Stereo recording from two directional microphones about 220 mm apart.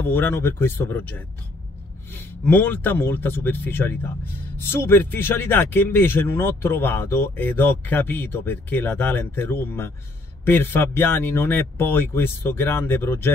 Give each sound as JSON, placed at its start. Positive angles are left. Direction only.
{"t": 0.0, "sound": "speech", "side_deg": 10}
{"t": 2.4, "sound": "speech", "side_deg": 10}